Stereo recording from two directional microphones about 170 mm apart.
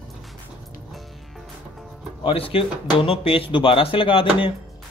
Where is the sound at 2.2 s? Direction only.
35° left (ahead or behind).